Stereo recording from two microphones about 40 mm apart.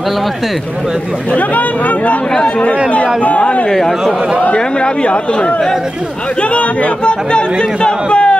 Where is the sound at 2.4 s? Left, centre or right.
Left.